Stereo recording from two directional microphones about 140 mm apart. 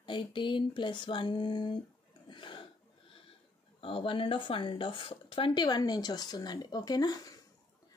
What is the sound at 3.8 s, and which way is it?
Speech, 40° left (ahead or behind).